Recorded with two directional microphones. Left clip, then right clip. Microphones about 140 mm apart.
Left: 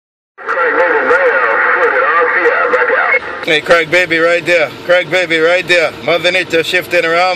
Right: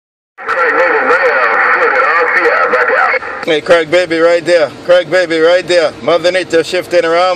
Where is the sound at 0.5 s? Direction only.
65° right (ahead or behind).